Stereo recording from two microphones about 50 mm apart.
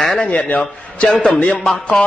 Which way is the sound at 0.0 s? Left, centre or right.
Centre.